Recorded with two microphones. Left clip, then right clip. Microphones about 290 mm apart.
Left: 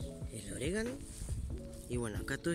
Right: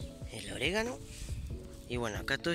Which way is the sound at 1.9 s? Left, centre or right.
Centre.